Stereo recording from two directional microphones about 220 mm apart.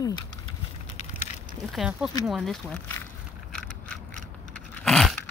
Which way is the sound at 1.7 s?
5° right (ahead or behind).